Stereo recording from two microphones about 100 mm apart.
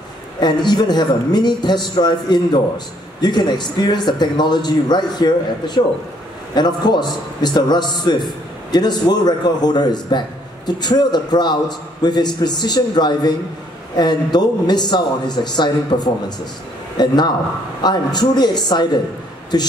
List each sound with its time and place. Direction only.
0.4 s a man's voice: 45° left (ahead or behind)